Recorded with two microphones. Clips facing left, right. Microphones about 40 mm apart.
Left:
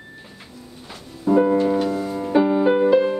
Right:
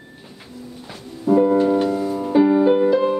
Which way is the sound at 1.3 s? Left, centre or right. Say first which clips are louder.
Right 1 dB; centre.